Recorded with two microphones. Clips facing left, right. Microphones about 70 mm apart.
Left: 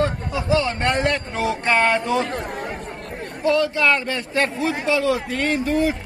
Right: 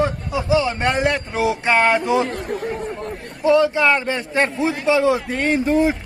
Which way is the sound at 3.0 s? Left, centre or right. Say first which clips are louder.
Left 1 dB; right.